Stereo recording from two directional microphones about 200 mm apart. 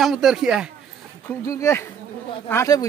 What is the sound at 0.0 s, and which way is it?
Speech, centre (ahead or behind).